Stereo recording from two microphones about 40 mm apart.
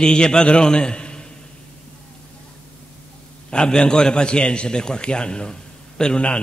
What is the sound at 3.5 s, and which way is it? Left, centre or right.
A man's voice, left.